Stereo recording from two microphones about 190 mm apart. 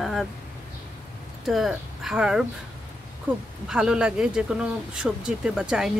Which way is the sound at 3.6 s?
5° right (ahead or behind).